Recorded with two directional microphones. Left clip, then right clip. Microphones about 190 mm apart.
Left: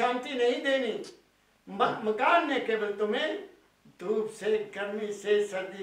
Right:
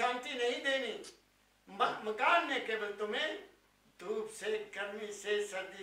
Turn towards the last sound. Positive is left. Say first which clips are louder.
# left 9 dB
turn(degrees=10)  # may be behind; listen again after turning